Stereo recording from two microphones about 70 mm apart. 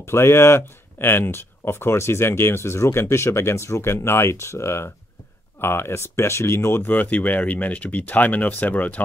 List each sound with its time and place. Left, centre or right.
0.0 s speech: left
6.8 s speech: left